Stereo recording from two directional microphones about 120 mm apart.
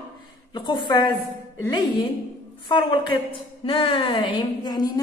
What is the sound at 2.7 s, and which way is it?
A woman's voice, 40° left (ahead or behind).